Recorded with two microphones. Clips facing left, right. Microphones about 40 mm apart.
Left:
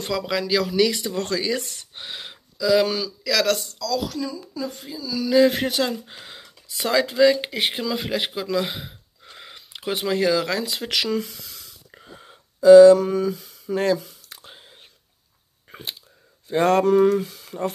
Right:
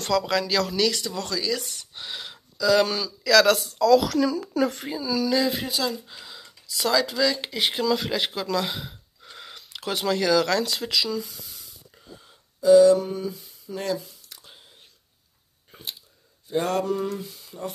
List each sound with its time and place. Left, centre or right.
0.2 s speech: centre
1.1 s speech: left
2.0 s speech: centre
4.0 s speech: right
5.4 s speech: left
5.9 s speech: left
6.8 s speech: left
10.9 s speech: left
11.9 s a sound: left
12.5 s a sound: left
16.4 s speech: left